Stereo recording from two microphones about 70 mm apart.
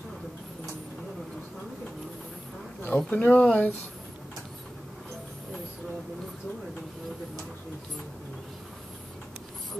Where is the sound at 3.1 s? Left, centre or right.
Centre.